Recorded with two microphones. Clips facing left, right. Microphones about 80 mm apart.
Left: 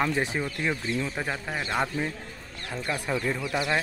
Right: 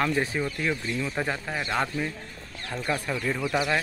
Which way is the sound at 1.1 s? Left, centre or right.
Centre.